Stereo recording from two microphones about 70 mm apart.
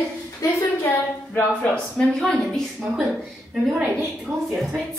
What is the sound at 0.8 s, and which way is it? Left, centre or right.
A woman's voice, left.